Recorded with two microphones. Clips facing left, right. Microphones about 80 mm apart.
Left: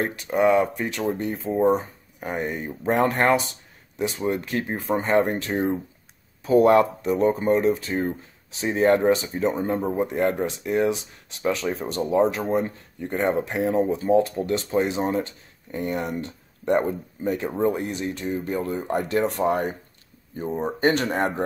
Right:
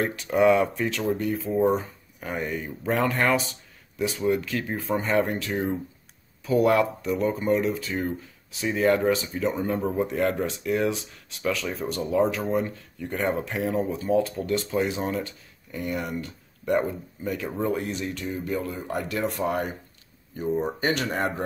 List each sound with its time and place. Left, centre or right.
0.3 s speech: centre; by 1.6 s left
1.6 s speech: left
18.2 s speech: left